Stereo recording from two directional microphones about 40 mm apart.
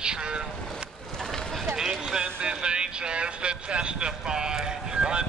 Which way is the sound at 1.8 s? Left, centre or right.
Centre.